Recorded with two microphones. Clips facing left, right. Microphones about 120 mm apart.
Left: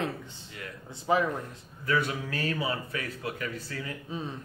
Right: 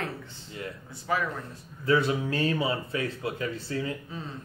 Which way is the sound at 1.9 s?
25° right (ahead or behind).